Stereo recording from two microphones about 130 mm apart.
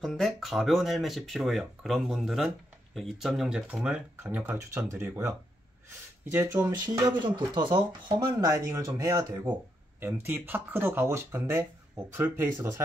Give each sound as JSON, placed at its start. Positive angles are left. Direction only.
{"t": 0.0, "sound": "speech", "side_deg": 0}
{"t": 7.2, "sound": "speech", "side_deg": -35}
{"t": 9.5, "sound": "speech", "side_deg": -15}